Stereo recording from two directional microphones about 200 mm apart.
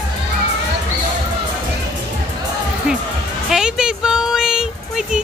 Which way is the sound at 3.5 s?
5° right (ahead or behind).